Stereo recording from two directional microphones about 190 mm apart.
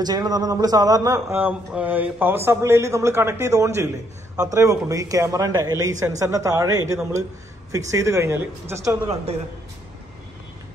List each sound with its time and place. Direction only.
0.0 s a man's voice: 20° right (ahead or behind)